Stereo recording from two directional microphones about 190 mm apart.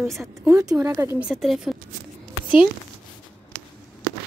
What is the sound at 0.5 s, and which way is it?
Speech, 15° right (ahead or behind).